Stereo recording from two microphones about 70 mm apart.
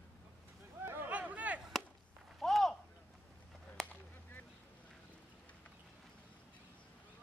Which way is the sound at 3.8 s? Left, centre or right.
Centre.